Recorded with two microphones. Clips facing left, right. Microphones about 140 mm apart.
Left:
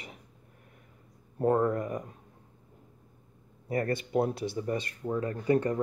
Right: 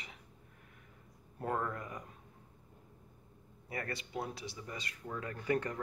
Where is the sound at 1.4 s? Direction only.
35° left (ahead or behind).